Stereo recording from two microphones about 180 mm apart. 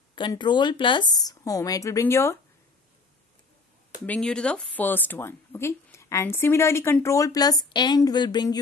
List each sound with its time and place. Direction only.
0.1 s a woman's voice: 25° left (ahead or behind)
4.0 s speech: 5° left (ahead or behind); by 8.5 s 25° left (ahead or behind)